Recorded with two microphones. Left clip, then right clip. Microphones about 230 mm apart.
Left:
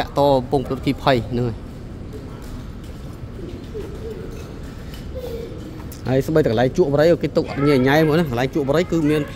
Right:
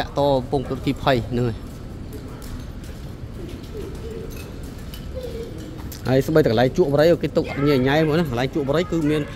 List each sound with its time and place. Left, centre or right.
0.0 s speech: centre
6.0 s speech: centre